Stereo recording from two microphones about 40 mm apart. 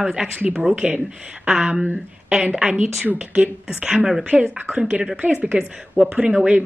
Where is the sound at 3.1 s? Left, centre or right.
Right.